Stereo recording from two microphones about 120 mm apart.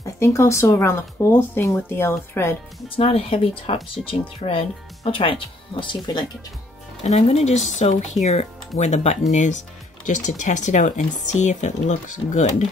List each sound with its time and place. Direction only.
0.0 s speech: 25° left (ahead or behind)
3.0 s speech: 55° left (ahead or behind)
7.0 s speech: 65° left (ahead or behind)
9.3 s speech: 90° left